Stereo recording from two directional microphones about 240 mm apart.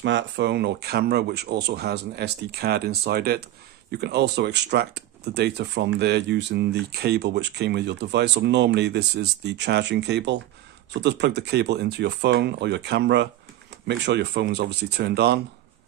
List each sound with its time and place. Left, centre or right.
0.0 s speech: right